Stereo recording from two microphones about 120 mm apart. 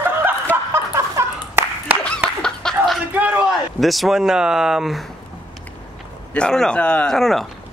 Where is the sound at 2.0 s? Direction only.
5° left (ahead or behind).